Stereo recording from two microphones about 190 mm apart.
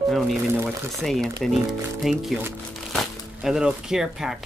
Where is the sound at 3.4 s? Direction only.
5° right (ahead or behind).